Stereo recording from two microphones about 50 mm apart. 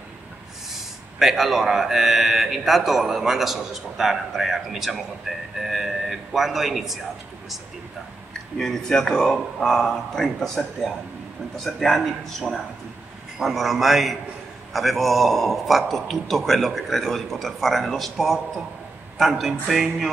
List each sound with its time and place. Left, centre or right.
1.2 s speech: centre
8.3 s speech: centre